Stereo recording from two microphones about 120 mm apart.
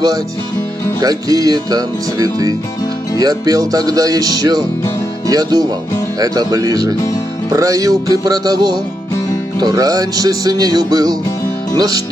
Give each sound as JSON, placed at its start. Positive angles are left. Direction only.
{"t": 1.0, "sound": "music", "side_deg": -30}
{"t": 11.7, "sound": "speech", "side_deg": -30}